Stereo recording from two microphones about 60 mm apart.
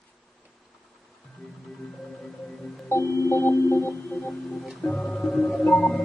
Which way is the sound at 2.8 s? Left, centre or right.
Left.